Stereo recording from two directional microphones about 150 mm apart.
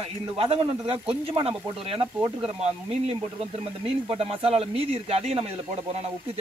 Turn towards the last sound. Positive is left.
turn(degrees=-40)  # may be behind; listen again after turning